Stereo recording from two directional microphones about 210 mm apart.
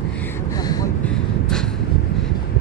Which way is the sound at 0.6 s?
20° left (ahead or behind).